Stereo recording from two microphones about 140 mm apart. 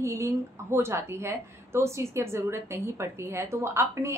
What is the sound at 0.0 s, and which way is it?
A woman's voice, 20° right (ahead or behind).